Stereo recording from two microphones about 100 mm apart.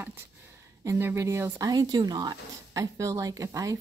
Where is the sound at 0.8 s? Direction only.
25° right (ahead or behind).